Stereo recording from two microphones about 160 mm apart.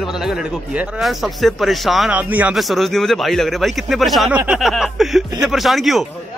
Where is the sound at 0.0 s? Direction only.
5° right (ahead or behind).